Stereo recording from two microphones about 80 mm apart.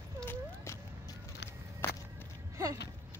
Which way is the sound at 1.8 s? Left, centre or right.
Left.